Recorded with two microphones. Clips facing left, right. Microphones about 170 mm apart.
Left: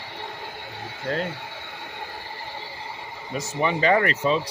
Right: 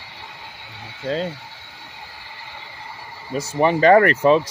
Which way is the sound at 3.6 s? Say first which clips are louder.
Right 7 dB; 40° right (ahead or behind).